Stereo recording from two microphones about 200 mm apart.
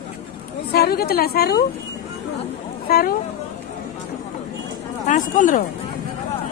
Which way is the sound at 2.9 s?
50° left (ahead or behind).